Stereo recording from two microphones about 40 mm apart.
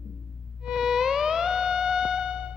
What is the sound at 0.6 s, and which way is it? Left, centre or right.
Theremin, centre.